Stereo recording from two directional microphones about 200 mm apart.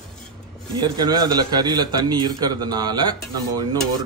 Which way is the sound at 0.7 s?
20° right (ahead or behind).